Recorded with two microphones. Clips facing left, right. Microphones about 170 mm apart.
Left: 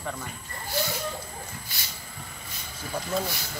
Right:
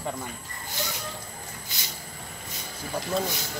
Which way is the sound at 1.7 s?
20° right (ahead or behind).